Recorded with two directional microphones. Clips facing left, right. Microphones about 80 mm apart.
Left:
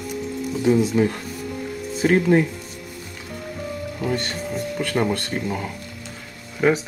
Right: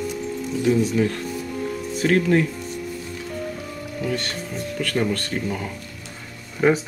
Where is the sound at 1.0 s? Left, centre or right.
Centre.